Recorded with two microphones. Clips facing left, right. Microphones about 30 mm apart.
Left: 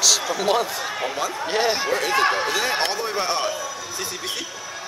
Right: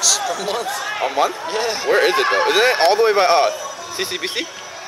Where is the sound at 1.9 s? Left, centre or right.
Right.